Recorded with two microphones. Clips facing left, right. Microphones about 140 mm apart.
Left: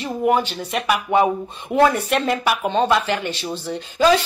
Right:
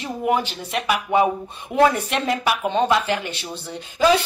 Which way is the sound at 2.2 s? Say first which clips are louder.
Left 1 dB; 10° right (ahead or behind).